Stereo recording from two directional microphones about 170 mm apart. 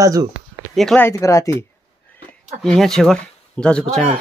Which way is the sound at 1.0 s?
20° left (ahead or behind).